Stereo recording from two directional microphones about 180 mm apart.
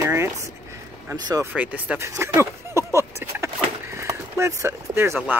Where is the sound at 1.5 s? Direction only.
10° right (ahead or behind).